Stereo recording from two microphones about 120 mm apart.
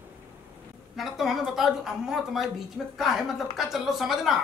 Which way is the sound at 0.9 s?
Centre (ahead or behind).